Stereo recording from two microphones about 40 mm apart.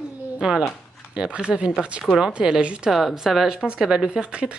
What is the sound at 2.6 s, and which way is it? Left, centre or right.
Speech, right.